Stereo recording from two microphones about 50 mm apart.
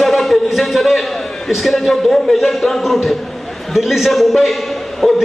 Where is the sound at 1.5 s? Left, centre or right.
Centre.